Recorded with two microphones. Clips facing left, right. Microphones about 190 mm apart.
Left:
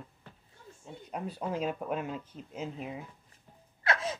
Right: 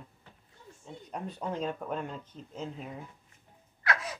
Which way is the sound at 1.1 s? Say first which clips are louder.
Left 1 dB; 5° left (ahead or behind).